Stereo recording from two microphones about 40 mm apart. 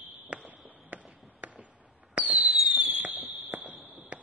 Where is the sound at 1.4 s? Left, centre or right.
Right.